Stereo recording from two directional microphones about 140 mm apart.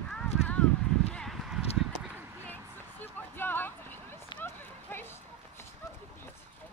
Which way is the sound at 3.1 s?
15° left (ahead or behind).